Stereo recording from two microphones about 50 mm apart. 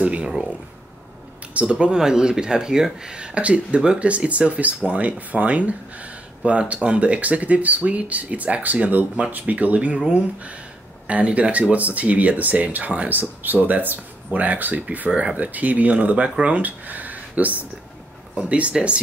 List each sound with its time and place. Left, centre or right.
0.0 s speech: right
1.5 s speech: right